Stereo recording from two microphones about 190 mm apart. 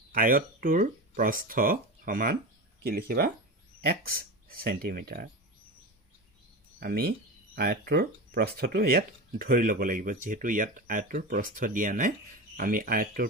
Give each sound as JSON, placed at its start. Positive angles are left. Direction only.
{"t": 0.1, "sound": "speech", "side_deg": -45}
{"t": 6.8, "sound": "speech", "side_deg": -55}